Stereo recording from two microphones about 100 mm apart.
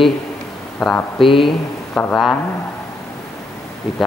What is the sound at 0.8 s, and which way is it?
Speech, 15° left (ahead or behind).